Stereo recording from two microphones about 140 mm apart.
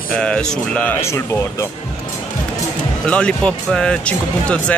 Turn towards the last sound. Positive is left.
turn(degrees=5)  # may be behind; listen again after turning